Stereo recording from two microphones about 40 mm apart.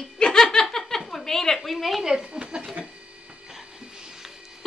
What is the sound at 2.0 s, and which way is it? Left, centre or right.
Speech, centre.